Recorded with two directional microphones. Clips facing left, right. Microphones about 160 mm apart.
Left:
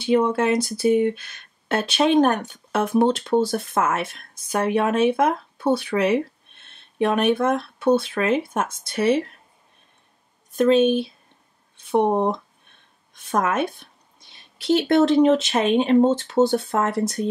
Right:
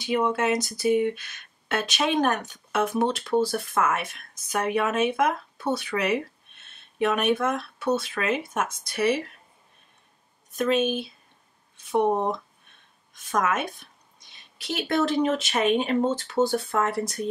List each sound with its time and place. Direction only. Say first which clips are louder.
0.0 s speech: left 5 dB; 30° left (ahead or behind)
10.6 s speech: left 7 dB; 30° left (ahead or behind)